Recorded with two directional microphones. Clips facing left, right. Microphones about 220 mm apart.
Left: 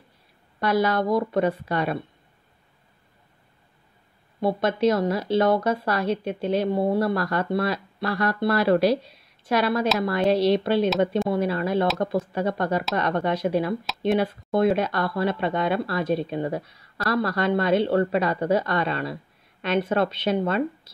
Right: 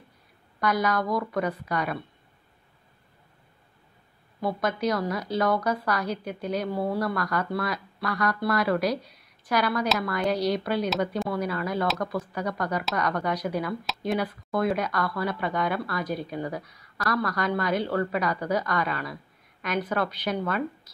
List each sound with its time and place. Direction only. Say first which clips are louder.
0.6 s speech: left 4 dB; 30° left (ahead or behind)
4.4 s speech: left 5 dB; 25° left (ahead or behind)